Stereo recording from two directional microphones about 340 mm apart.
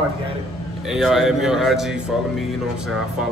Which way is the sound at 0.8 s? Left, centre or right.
Centre.